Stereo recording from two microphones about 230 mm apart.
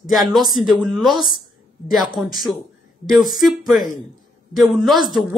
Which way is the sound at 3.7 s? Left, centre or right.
Centre.